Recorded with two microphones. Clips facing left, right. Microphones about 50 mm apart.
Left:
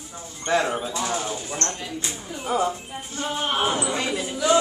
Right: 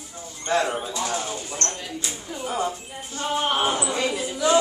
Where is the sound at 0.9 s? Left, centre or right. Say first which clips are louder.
Left 1 dB; centre.